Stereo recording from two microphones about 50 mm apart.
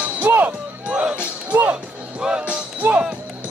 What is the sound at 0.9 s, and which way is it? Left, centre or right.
Music, centre.